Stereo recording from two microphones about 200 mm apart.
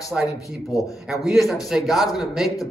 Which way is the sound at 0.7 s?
15° left (ahead or behind).